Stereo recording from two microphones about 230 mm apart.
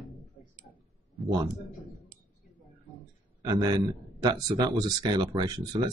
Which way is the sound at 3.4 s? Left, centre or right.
Centre.